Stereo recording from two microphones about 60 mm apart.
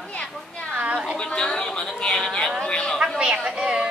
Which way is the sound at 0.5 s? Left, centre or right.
Centre.